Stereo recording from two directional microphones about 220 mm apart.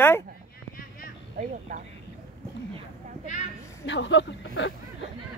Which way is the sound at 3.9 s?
55° left (ahead or behind).